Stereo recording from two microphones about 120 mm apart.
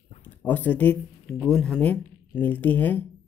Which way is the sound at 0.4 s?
15° left (ahead or behind).